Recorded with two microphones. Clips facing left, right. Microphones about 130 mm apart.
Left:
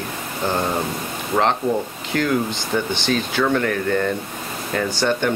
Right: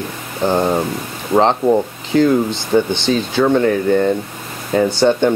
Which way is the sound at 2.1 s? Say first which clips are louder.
Right 7 dB; 20° right (ahead or behind).